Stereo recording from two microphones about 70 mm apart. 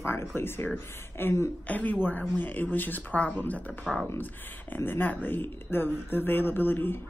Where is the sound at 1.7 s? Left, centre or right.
Left.